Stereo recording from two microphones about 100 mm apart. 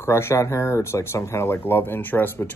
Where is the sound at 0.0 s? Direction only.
25° left (ahead or behind).